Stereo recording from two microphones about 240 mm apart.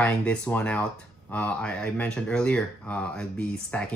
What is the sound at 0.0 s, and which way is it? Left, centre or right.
Speech, centre.